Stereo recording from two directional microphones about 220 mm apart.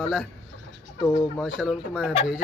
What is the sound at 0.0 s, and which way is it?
Speech, centre (ahead or behind).